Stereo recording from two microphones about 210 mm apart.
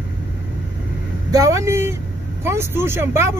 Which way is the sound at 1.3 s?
15° right (ahead or behind).